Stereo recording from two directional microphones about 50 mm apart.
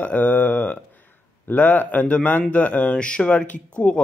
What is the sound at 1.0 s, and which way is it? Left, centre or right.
A man's voice, left.